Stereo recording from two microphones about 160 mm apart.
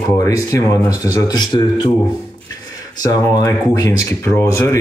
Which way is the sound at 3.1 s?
20° left (ahead or behind).